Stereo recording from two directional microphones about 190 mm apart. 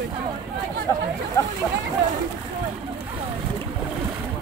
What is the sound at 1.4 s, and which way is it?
Speech, 20° left (ahead or behind).